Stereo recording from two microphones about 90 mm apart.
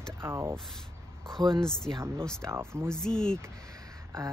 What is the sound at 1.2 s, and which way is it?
Speech, 5° left (ahead or behind).